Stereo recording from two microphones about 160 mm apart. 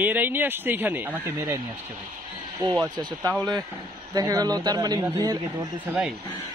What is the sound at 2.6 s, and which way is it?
Speech, 25° right (ahead or behind).